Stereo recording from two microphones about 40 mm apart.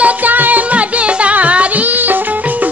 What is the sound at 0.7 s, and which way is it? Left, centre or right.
Music, right.